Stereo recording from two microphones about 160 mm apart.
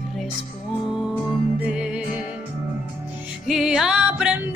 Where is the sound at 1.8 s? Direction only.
5° right (ahead or behind).